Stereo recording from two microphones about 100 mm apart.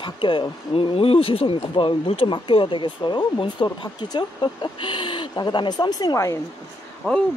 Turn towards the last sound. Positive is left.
turn(degrees=15)  # may be behind; listen again after turning